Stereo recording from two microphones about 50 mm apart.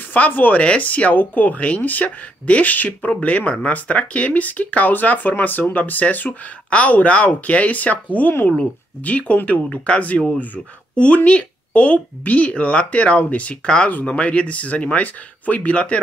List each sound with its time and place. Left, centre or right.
0.1 s speech: left